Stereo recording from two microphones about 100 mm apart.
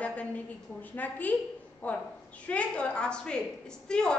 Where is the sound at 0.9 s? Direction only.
15° left (ahead or behind).